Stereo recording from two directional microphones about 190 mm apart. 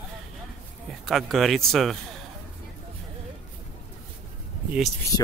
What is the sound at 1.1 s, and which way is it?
Speech, centre (ahead or behind).